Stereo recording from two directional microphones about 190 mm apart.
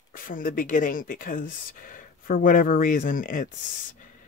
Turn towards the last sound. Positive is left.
turn(degrees=45)  # may be behind; listen again after turning